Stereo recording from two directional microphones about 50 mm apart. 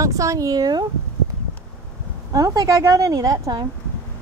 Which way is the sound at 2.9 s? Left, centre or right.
Right.